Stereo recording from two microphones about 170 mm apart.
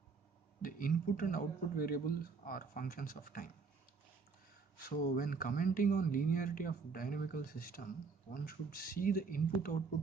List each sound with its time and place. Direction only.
0.6 s speech: 55° left (ahead or behind)
4.8 s speech: 55° left (ahead or behind)